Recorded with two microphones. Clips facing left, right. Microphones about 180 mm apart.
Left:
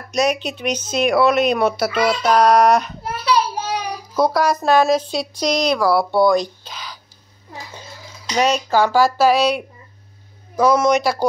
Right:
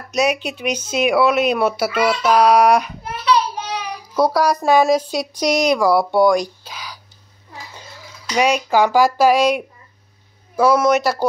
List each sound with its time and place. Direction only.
0.1 s speech: 10° right (ahead or behind)
3.5 s child singing: 40° left (ahead or behind)
4.2 s speech: 10° right (ahead or behind)
8.4 s speech: 10° right (ahead or behind)